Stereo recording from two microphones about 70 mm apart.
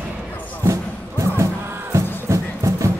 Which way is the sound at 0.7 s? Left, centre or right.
Right.